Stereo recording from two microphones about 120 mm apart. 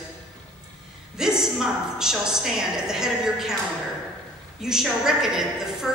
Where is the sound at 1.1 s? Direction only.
5° right (ahead or behind).